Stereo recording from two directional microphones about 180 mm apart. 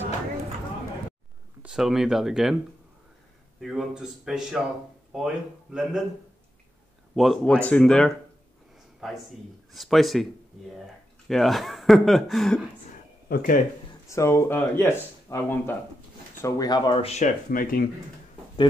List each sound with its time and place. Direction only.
1.6 s speech: 5° right (ahead or behind)
3.6 s speech: 5° right (ahead or behind)
7.2 s speech: centre (ahead or behind)
11.2 s speech: centre (ahead or behind)
13.3 s speech: 50° left (ahead or behind)
14.0 s speech: 15° left (ahead or behind); by 17.3 s 35° left (ahead or behind)
17.5 s speech: 50° left (ahead or behind)